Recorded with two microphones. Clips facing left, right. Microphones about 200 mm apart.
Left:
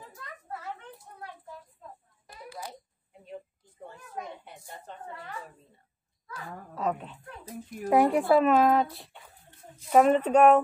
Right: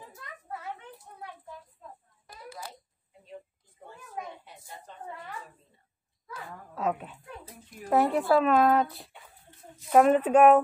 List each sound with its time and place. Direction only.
4.5 s a sound: 55° left (ahead or behind)
6.7 s dog: 5° right (ahead or behind)
7.9 s speech: 10° left (ahead or behind)